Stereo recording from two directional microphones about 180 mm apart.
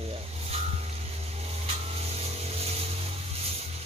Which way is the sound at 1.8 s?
35° right (ahead or behind).